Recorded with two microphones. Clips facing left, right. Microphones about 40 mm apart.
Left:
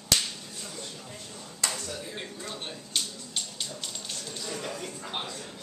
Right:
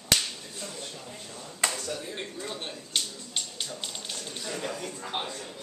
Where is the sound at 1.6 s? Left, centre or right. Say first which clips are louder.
Right 3 dB; right.